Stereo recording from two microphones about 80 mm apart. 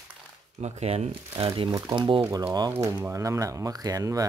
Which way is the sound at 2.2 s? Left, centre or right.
Right.